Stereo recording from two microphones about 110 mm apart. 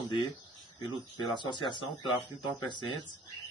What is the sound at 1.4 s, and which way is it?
Speech, 45° left (ahead or behind).